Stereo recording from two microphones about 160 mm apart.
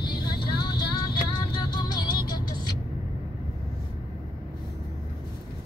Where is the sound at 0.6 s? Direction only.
25° left (ahead or behind).